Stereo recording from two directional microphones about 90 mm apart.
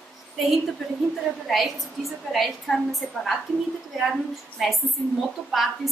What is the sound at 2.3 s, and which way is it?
A woman's voice, centre (ahead or behind).